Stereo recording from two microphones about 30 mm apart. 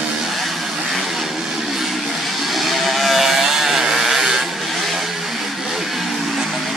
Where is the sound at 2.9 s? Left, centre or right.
Centre.